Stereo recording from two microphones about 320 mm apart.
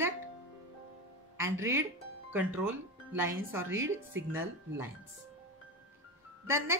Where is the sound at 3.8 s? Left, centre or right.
Right.